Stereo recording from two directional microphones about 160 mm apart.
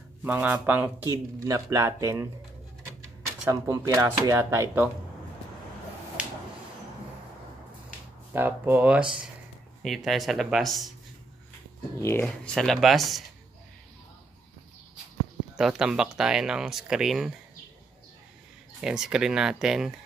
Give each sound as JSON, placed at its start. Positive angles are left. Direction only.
{"t": 0.2, "sound": "speech", "side_deg": -10}
{"t": 3.4, "sound": "speech", "side_deg": -20}
{"t": 6.2, "sound": "a sound", "side_deg": -10}
{"t": 8.3, "sound": "speech", "side_deg": -10}
{"t": 12.0, "sound": "speech", "side_deg": 15}
{"t": 12.5, "sound": "speech", "side_deg": 0}
{"t": 15.5, "sound": "speech", "side_deg": -5}
{"t": 18.8, "sound": "speech", "side_deg": -5}